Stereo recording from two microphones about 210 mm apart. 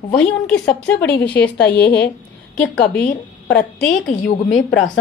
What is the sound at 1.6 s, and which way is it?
Speech, 50° left (ahead or behind).